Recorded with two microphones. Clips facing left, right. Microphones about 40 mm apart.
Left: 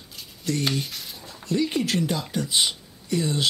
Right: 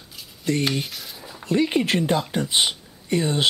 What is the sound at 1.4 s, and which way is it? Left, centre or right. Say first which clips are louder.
Speech: right 3 dB; right.